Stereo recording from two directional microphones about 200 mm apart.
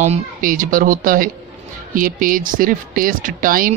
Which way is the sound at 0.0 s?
40° right (ahead or behind).